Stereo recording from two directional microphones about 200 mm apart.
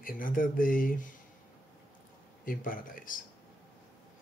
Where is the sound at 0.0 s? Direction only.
45° left (ahead or behind).